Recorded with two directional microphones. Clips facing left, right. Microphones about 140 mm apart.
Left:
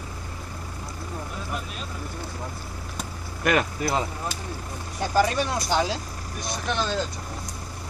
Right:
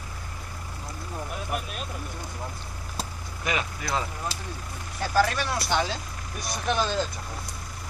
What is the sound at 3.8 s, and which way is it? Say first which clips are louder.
Speech: left 4 dB; 30° left (ahead or behind).